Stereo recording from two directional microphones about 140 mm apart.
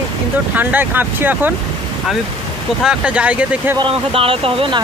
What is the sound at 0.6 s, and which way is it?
Speech, 15° right (ahead or behind).